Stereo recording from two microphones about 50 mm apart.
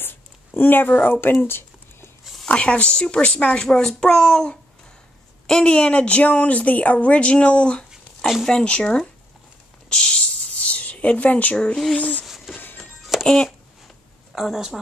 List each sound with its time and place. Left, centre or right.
0.0 s a sound: left
2.4 s speech: left
3.6 s a child's voice: centre
9.8 s a sound: centre
11.5 s a child's voice: centre
12.0 s speech: left
12.5 s music: left
13.2 s a sound: centre
14.3 s a woman's voice: centre